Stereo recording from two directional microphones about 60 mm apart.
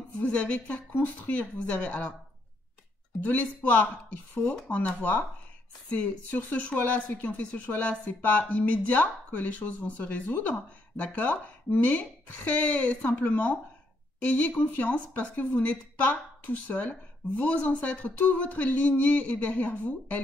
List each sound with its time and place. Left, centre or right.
0.2 s speech: left
3.2 s speech: left